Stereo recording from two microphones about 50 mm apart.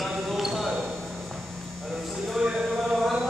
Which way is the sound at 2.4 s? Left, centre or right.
Centre.